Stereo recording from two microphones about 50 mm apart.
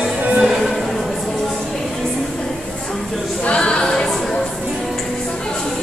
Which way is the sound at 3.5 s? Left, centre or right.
Centre.